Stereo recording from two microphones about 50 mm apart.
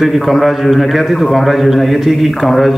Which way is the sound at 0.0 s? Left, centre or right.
Centre.